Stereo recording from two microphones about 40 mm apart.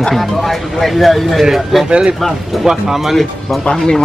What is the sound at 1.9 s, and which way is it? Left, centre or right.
Speech, right.